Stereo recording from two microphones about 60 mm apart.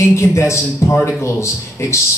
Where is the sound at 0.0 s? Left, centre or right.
Left.